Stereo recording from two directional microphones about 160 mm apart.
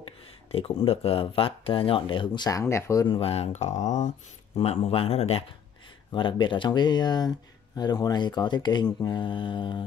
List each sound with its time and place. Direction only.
0.5 s speech: 35° left (ahead or behind); by 3.1 s 20° left (ahead or behind)
3.1 s speech: 40° left (ahead or behind)
4.6 s speech: 40° left (ahead or behind)